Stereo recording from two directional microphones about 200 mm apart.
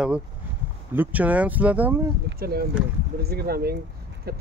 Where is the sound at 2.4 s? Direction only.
50° right (ahead or behind).